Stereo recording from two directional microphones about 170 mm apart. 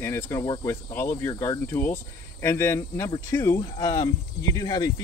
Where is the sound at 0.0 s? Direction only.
15° left (ahead or behind).